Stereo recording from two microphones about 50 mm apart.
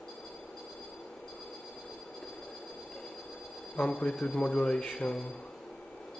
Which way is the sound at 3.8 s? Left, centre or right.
Centre.